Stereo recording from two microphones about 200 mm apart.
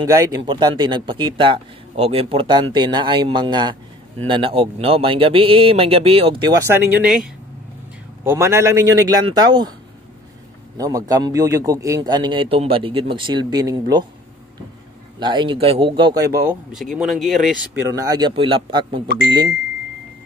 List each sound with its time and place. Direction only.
0.0 s speech: 20° right (ahead or behind)
7.0 s speech: 5° right (ahead or behind); by 9.8 s 20° right (ahead or behind)
10.8 s speech: 15° right (ahead or behind)
15.1 s speech: 25° right (ahead or behind)
16.7 s speech: centre (ahead or behind); by 19.0 s 25° right (ahead or behind)